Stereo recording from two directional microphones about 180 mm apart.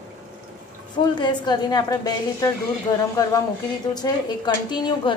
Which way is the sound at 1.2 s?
25° left (ahead or behind).